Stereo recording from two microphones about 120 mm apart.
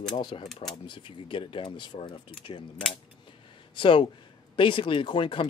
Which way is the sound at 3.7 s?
40° left (ahead or behind).